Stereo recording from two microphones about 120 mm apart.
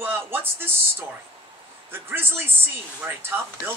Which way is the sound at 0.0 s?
15° right (ahead or behind).